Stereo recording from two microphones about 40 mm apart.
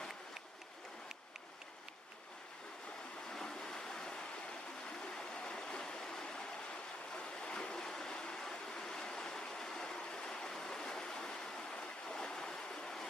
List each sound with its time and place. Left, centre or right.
3.3 s waves: centre
5.0 s stream: centre
7.3 s train: left